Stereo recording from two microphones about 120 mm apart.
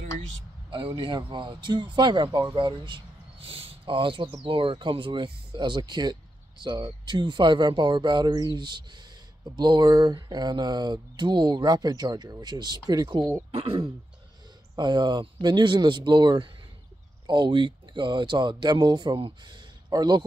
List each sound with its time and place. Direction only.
0.7 s speech: 45° right (ahead or behind)
13.5 s speech: 55° right (ahead or behind)
14.8 s speech: 40° right (ahead or behind)